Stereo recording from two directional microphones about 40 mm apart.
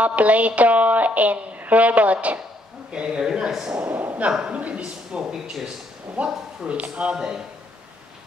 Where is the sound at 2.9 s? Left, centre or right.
Right.